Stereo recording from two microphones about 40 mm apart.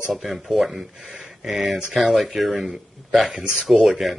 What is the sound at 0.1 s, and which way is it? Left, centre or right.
Speech, centre.